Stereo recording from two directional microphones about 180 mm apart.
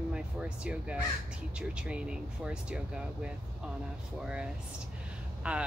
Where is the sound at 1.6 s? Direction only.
5° right (ahead or behind).